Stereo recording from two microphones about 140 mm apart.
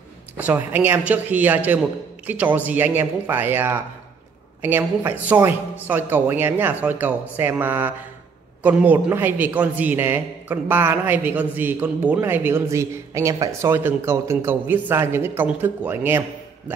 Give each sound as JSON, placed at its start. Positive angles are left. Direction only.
{"t": 0.4, "sound": "speech", "side_deg": -15}